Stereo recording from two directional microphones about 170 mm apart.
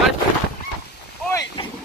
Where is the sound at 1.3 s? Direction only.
20° left (ahead or behind).